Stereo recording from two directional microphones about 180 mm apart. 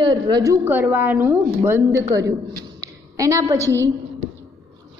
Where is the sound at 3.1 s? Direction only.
20° right (ahead or behind).